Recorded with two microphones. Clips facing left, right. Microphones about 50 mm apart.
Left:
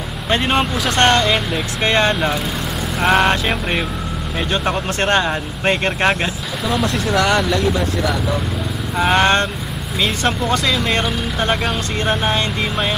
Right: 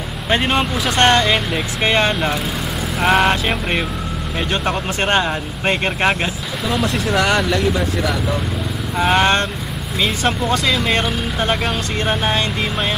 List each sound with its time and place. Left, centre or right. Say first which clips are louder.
0.8 s speech: right 1 dB; centre